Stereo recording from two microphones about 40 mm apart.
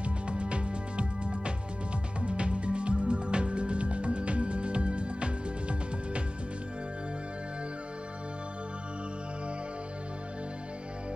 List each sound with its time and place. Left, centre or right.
0.0 s music: right